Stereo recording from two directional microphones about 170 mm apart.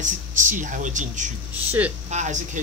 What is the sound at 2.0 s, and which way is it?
Speech, 45° right (ahead or behind).